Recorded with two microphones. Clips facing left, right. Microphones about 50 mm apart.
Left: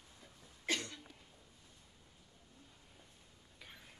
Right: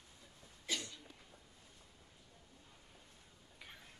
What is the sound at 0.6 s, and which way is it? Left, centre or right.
Cough, left.